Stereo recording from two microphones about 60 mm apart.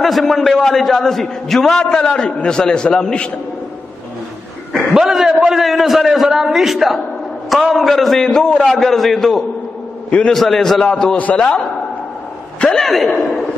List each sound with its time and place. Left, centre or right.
0.0 s a man's voice: centre
4.7 s a man's voice: centre
10.0 s a man's voice: centre
10.3 s a man's voice: centre
11.1 s a man's voice: left
12.5 s a man's voice: centre
12.8 s a man's voice: centre